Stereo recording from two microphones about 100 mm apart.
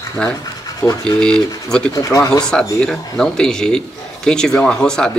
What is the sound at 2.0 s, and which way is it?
Speech, 40° left (ahead or behind).